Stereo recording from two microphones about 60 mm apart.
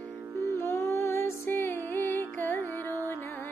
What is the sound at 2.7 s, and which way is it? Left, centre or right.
Music, right.